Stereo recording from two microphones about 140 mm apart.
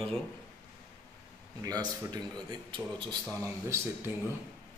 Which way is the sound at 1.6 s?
25° right (ahead or behind).